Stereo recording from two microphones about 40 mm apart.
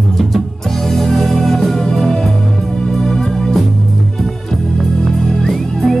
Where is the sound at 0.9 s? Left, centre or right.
Centre.